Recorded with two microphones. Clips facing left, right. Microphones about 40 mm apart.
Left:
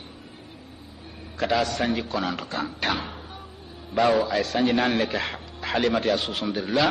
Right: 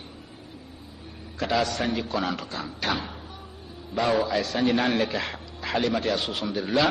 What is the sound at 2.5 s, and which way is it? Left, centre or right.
Speech, left.